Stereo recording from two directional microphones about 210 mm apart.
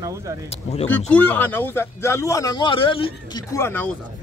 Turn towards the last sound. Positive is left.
turn(degrees=10)  # may be behind; listen again after turning